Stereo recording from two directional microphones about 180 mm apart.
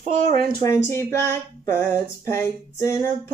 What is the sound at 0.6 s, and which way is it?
Female singing, 15° left (ahead or behind).